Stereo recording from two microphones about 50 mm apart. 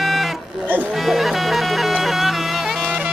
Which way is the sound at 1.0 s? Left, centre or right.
Centre.